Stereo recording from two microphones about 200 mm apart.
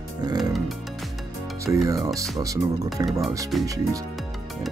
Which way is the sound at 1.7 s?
15° right (ahead or behind).